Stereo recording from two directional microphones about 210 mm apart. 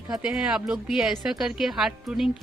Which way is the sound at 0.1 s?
5° right (ahead or behind).